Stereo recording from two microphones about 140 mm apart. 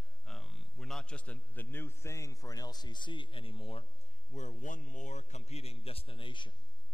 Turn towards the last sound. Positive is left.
turn(degrees=35)  # may be behind; listen again after turning